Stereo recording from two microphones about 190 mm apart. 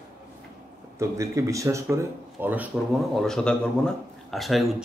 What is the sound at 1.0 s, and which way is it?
A man's voice, 15° right (ahead or behind).